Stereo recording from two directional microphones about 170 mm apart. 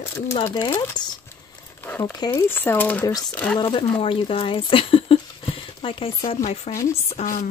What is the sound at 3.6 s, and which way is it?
Speech, 30° left (ahead or behind).